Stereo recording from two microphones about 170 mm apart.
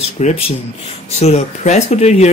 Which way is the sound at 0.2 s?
40° left (ahead or behind).